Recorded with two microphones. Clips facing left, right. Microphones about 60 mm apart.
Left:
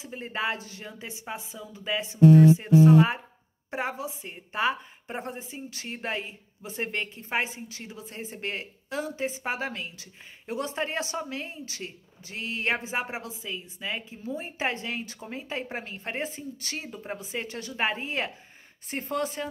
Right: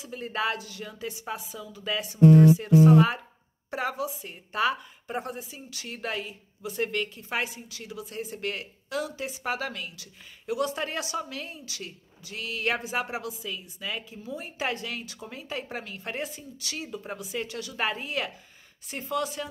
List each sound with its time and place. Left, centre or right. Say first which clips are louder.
0.0 s a woman's voice: right 1 dB; left